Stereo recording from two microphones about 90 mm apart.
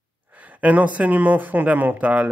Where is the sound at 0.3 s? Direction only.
15° right (ahead or behind).